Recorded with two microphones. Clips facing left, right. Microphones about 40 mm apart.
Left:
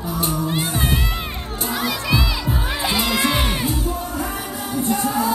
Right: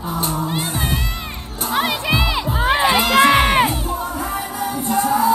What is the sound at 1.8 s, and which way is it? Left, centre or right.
Children shouting, right.